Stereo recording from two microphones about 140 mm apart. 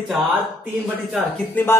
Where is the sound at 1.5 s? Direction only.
15° left (ahead or behind).